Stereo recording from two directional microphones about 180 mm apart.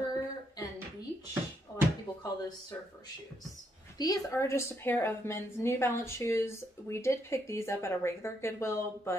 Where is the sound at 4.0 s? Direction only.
20° left (ahead or behind).